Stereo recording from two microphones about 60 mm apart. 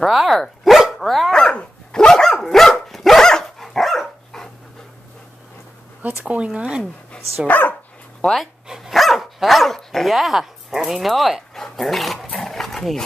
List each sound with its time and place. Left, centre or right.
0.0 s dog: centre
1.3 s dog: centre
6.2 s speech: centre
6.8 s speech: centre
7.4 s speech: left
8.6 s dog: centre
8.9 s speech: centre
12.4 s dog: centre